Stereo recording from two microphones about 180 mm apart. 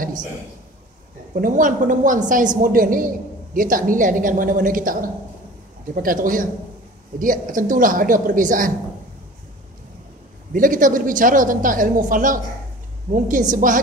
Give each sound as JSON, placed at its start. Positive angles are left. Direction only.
{"t": 1.3, "sound": "a woman's voice", "side_deg": -45}
{"t": 10.5, "sound": "a woman's voice", "side_deg": -50}